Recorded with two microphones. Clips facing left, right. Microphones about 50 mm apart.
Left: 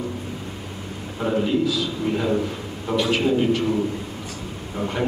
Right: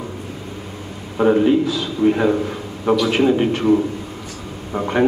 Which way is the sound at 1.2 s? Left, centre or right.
Right.